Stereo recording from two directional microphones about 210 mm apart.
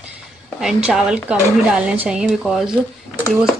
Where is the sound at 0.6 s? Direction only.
5° right (ahead or behind).